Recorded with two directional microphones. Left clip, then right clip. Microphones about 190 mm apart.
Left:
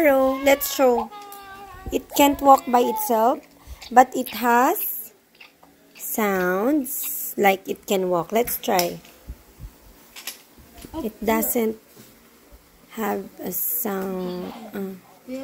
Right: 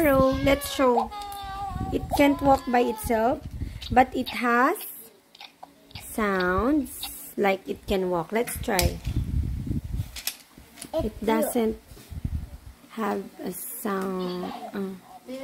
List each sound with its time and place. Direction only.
0.0 s a woman's voice: centre (ahead or behind)
0.9 s a sound: 20° right (ahead or behind)
1.9 s a woman's voice: 5° left (ahead or behind)
6.1 s a woman's voice: 10° left (ahead or behind)
11.2 s a woman's voice: centre (ahead or behind)
12.9 s a woman's voice: centre (ahead or behind)